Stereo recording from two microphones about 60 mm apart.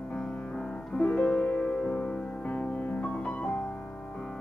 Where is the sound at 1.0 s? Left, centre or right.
Left.